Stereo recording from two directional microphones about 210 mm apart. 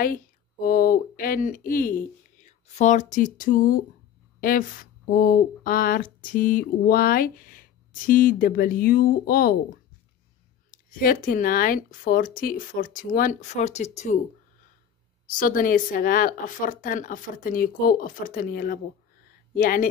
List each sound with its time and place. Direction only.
0.0 s a woman's voice: 45° left (ahead or behind)
15.3 s a woman's voice: 40° left (ahead or behind)